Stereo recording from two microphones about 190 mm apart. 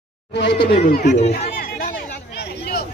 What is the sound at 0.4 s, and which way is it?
Speech, 65° left (ahead or behind).